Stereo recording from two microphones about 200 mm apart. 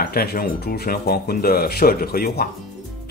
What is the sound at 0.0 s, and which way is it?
Speech, 50° left (ahead or behind).